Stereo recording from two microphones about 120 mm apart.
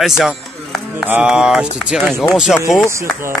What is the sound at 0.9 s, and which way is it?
Speech, 15° right (ahead or behind).